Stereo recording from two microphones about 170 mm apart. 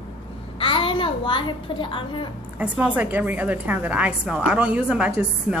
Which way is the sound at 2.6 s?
10° right (ahead or behind).